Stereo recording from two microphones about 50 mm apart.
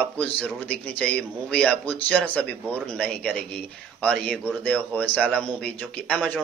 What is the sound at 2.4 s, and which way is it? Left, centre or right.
A man's voice, centre.